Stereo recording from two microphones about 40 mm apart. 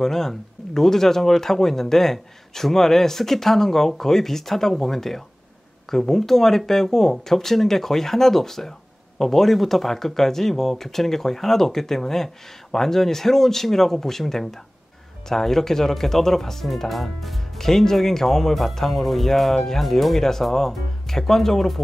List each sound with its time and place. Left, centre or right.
0.0 s speech: centre